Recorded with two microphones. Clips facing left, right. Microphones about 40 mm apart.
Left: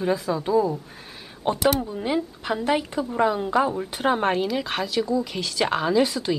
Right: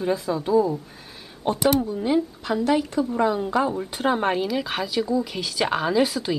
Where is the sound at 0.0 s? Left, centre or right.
Centre.